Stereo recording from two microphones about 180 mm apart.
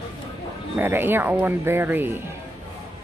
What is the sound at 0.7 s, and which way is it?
Speech, 10° right (ahead or behind).